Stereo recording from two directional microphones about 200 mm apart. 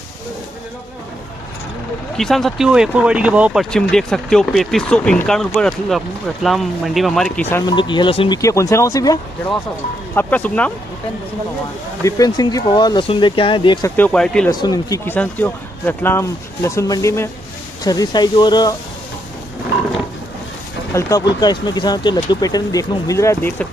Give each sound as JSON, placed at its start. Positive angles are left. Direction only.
{"t": 2.1, "sound": "speech", "side_deg": 0}
{"t": 7.6, "sound": "speech", "side_deg": 25}
{"t": 12.0, "sound": "speech", "side_deg": 20}
{"t": 13.9, "sound": "speech", "side_deg": 5}
{"t": 14.5, "sound": "speech", "side_deg": 20}
{"t": 20.9, "sound": "speech", "side_deg": 20}